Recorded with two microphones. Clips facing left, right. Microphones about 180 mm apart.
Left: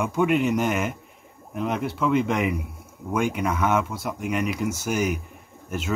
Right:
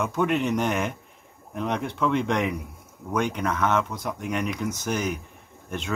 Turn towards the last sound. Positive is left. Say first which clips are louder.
# left 3 dB
turn(degrees=5)  # may be behind; listen again after turning